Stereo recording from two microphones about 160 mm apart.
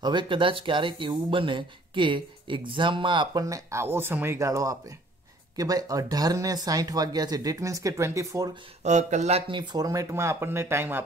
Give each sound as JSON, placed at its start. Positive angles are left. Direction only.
{"t": 0.0, "sound": "speech", "side_deg": -30}
{"t": 8.8, "sound": "speech", "side_deg": -45}
{"t": 9.5, "sound": "speech", "side_deg": -30}